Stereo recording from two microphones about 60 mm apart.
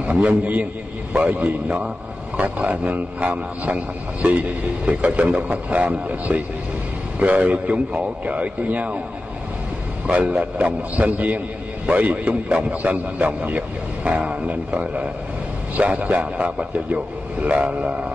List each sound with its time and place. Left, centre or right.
0.0 s a man's voice: right
10.0 s a man's voice: centre